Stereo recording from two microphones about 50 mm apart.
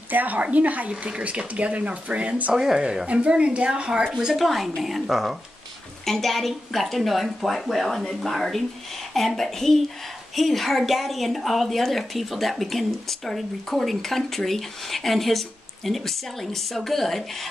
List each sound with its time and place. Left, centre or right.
0.1 s speech: right
2.5 s speech: centre
3.1 s a woman's voice: right
4.1 s speech: centre